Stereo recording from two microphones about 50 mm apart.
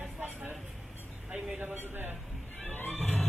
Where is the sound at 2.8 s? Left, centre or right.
Left.